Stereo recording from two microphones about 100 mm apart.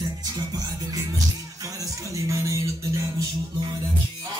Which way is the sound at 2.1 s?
30° right (ahead or behind).